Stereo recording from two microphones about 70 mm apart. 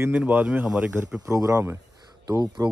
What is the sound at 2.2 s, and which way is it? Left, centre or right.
Speech, right.